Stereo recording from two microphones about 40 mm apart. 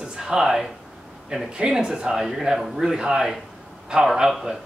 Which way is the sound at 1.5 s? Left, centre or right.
Centre.